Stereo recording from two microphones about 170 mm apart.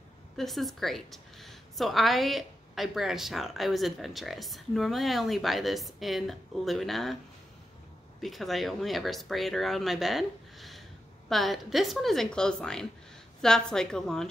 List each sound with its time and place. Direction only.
0.4 s a woman's voice: centre (ahead or behind)
8.2 s a woman's voice: centre (ahead or behind)